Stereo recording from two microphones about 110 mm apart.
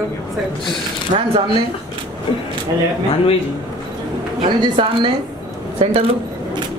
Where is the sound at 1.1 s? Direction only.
75° right (ahead or behind).